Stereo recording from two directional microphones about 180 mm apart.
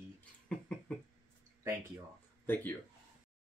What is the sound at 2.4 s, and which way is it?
Speech, 10° left (ahead or behind).